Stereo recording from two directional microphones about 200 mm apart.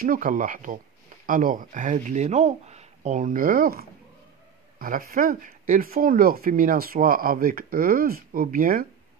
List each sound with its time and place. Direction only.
0.0 s speech: 45° right (ahead or behind)